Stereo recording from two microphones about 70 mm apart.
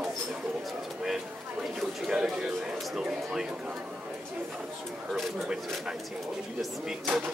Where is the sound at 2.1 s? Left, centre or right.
Centre.